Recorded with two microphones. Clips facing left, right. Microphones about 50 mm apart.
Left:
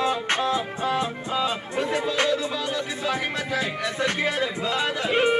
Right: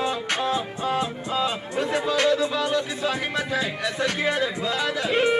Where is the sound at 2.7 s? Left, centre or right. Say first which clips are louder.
Right 2 dB; left.